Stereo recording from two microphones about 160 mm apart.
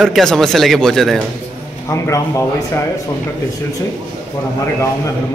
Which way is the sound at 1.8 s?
20° left (ahead or behind).